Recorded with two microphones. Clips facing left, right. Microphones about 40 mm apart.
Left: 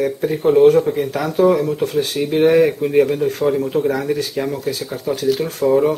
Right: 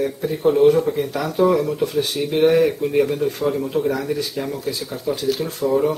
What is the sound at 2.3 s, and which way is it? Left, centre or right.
Speech, centre.